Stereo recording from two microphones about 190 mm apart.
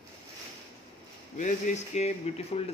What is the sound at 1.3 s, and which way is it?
Speech, 40° left (ahead or behind).